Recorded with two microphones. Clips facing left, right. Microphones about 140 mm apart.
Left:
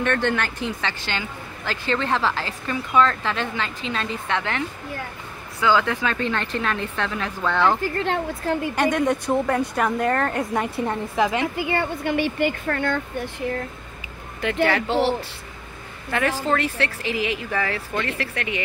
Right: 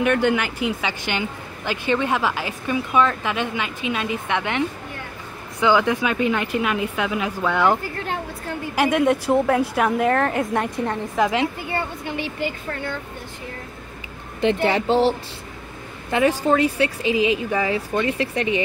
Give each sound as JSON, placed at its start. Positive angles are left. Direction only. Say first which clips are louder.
{"t": 0.0, "sound": "a woman's voice", "louder": "right 3 dB", "side_deg": -10}
{"t": 11.5, "sound": "speech", "louder": "left 3 dB", "side_deg": 90}
{"t": 14.4, "sound": "speech", "louder": "right 2 dB", "side_deg": -20}
{"t": 16.1, "sound": "a woman's voice", "louder": "right 4 dB", "side_deg": -15}